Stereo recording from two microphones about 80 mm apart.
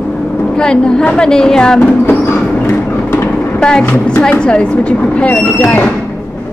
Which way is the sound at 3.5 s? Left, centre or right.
Centre.